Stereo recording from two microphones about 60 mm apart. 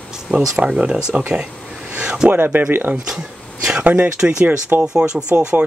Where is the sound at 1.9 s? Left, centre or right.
Centre.